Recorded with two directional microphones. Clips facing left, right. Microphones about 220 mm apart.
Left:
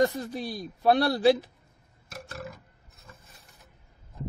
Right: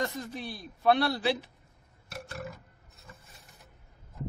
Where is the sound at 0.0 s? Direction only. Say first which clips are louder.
Left 8 dB; 35° left (ahead or behind).